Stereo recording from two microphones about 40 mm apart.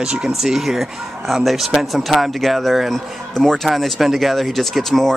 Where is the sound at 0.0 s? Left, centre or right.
Right.